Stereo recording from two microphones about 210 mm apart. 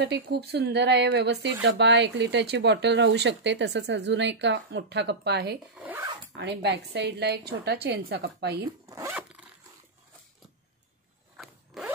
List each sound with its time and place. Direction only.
0.0 s a woman's voice: 55° right (ahead or behind)
5.8 s speech: 10° right (ahead or behind)
6.3 s a woman's voice: 55° right (ahead or behind)
8.8 s speech: 15° right (ahead or behind)
11.3 s zipper: centre (ahead or behind)